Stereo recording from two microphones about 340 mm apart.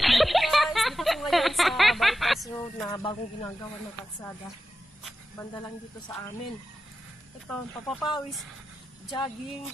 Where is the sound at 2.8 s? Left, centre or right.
Centre.